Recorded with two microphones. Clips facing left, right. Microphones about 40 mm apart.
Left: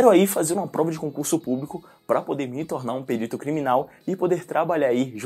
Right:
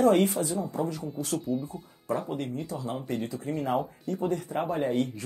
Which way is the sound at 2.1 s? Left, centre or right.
Left.